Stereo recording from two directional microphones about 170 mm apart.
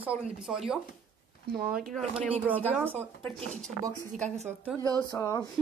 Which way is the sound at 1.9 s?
5° right (ahead or behind).